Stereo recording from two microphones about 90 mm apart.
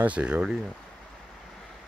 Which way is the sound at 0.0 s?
10° right (ahead or behind).